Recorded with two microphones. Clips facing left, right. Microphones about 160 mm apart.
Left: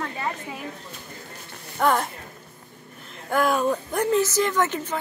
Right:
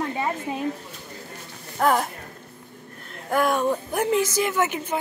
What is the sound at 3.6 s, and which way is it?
A woman's voice, 10° right (ahead or behind).